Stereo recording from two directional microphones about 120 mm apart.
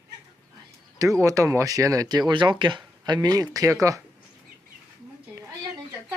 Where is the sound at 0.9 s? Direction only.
25° right (ahead or behind).